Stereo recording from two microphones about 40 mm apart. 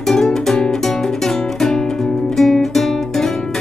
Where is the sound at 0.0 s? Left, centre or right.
Centre.